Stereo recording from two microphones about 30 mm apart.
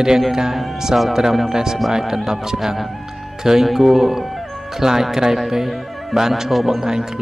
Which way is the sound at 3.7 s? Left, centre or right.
Centre.